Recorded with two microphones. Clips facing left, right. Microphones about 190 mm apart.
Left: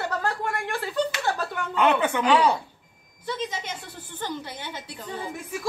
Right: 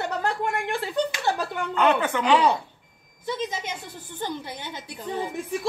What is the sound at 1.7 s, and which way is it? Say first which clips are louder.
Speech: even; 15° left (ahead or behind).